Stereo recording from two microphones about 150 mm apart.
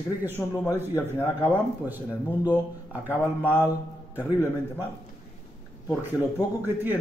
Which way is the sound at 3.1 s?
15° left (ahead or behind).